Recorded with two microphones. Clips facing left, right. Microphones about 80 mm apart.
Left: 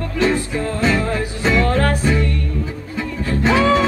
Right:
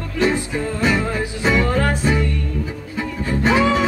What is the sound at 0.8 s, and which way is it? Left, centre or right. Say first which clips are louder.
Music: left 1 dB; centre.